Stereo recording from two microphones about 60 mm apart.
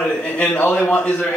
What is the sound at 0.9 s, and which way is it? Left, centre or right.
Speech, left.